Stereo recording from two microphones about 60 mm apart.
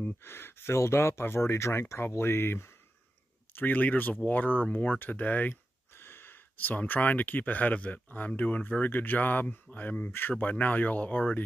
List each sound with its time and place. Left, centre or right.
0.2 s speech: left
3.5 s speech: left
5.9 s speech: left
10.4 s speech: left